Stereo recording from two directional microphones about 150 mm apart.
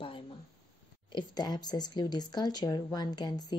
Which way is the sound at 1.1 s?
25° left (ahead or behind).